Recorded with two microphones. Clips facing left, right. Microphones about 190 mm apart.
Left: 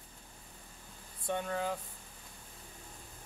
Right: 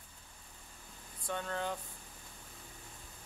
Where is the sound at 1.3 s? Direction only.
15° left (ahead or behind).